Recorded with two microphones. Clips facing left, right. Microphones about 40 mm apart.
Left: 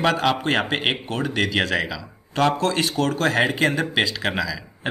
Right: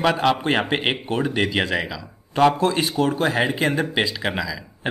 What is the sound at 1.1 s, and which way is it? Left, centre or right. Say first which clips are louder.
Speech: right 1 dB; right.